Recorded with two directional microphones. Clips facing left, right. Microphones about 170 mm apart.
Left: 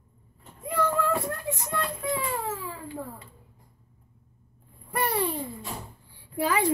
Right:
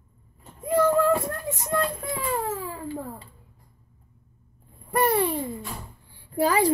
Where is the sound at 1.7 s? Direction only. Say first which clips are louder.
Right 7 dB; 45° right (ahead or behind).